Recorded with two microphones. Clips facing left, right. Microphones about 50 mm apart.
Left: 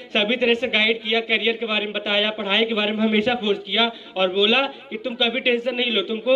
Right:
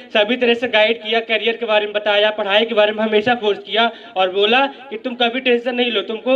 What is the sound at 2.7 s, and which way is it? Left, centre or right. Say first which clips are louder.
Speech: right 8 dB; centre.